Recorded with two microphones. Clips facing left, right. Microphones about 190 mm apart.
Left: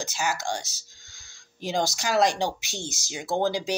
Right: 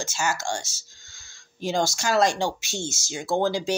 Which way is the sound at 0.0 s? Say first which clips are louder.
Right 1 dB; 15° left (ahead or behind).